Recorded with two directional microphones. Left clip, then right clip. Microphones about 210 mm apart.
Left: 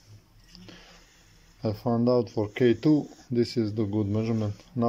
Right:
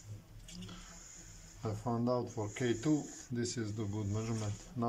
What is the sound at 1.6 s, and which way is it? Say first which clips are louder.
Speech: left 10 dB; 40° left (ahead or behind).